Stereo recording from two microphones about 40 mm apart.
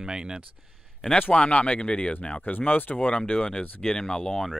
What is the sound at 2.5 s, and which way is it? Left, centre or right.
Speech, left.